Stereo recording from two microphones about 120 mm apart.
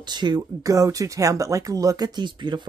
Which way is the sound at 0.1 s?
35° right (ahead or behind).